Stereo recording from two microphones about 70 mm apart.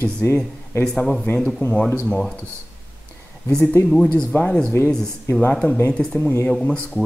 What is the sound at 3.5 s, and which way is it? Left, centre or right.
Speech, centre.